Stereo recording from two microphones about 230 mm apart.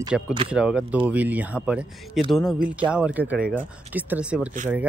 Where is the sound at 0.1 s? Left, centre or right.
Centre.